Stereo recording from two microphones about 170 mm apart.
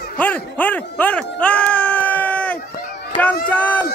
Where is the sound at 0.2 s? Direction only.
10° left (ahead or behind).